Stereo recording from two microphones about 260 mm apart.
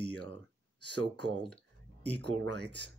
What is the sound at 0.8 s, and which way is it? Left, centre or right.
Speech, right.